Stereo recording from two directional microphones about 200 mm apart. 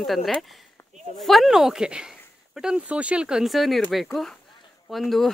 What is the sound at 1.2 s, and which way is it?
Speech, centre (ahead or behind).